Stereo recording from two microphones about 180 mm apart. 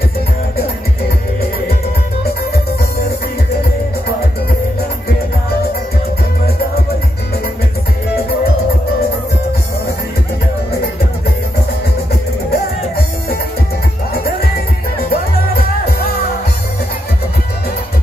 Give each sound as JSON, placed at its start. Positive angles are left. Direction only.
{"t": 12.1, "sound": "music", "side_deg": 60}
{"t": 15.0, "sound": "music", "side_deg": 60}